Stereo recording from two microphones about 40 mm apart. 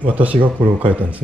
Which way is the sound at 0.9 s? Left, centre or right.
Right.